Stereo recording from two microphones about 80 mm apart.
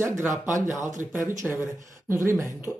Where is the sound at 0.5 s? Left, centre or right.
Right.